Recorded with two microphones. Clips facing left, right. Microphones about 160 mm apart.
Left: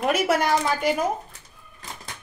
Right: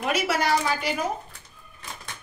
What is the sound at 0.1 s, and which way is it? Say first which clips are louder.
Speech: left 1 dB; 50° left (ahead or behind).